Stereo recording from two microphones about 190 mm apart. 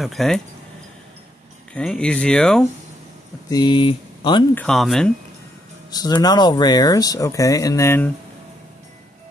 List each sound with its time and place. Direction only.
0.0 s speech: centre (ahead or behind)
1.7 s speech: 5° left (ahead or behind)
3.4 s speech: 20° left (ahead or behind)
4.6 s speech: centre (ahead or behind)
5.9 s speech: 20° left (ahead or behind)